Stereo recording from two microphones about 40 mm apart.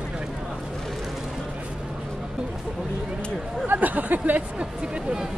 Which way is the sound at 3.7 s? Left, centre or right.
Right.